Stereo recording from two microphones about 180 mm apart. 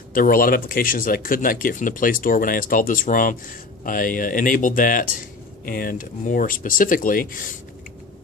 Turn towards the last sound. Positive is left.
turn(degrees=50)  # may be behind; listen again after turning